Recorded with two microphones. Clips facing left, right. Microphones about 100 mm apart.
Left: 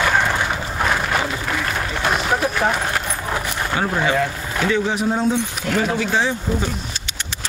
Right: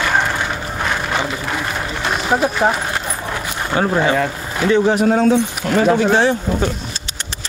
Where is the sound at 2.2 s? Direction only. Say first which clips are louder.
Right 7 dB; 20° right (ahead or behind).